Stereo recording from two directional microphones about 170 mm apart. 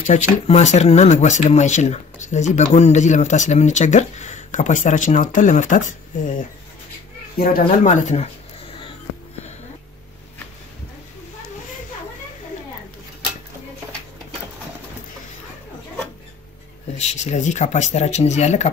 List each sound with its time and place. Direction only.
0.1 s speech: 40° left (ahead or behind)
17.0 s speech: 40° left (ahead or behind)